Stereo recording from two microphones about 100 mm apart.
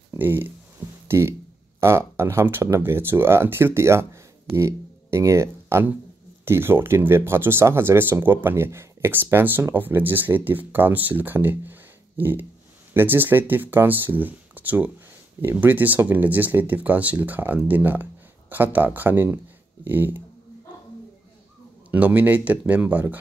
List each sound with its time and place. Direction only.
0.1 s speech: 20° right (ahead or behind)
1.0 s a sound: 25° right (ahead or behind)
1.8 s speech: 25° right (ahead or behind)
21.9 s speech: 15° right (ahead or behind)